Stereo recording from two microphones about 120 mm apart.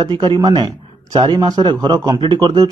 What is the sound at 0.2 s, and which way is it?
A man's voice, 40° right (ahead or behind).